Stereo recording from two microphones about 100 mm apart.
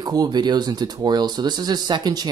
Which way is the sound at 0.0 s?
45° right (ahead or behind).